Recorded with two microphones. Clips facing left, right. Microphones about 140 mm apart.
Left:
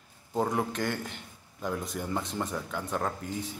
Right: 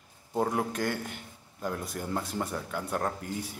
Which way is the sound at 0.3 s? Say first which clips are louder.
Even; 5° right (ahead or behind).